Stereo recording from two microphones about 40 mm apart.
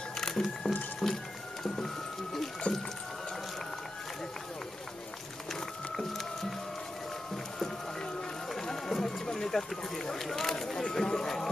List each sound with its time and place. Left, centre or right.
0.3 s music: centre
2.7 s rowboat: left
5.5 s music: centre
8.5 s run: centre